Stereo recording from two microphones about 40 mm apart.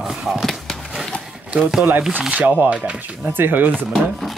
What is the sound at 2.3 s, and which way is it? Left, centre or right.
Speech, right.